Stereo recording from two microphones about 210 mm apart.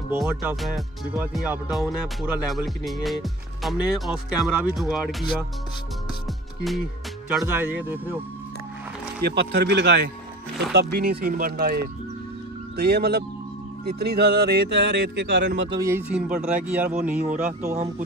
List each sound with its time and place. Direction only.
0.1 s speech: 10° right (ahead or behind)
7.2 s speech: 10° right (ahead or behind)
9.2 s speech: 55° right (ahead or behind)
15.8 s speech: 10° right (ahead or behind)
17.5 s speech: 35° right (ahead or behind)